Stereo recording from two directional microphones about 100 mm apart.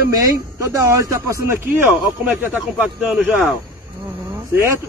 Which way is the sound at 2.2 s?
15° right (ahead or behind).